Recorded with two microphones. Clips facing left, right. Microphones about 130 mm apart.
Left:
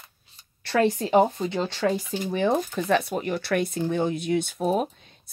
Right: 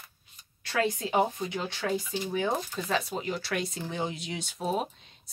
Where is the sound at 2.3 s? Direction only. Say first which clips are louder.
Left 7 dB; 65° left (ahead or behind).